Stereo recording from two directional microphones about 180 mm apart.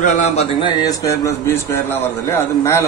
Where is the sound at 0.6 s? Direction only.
20° left (ahead or behind).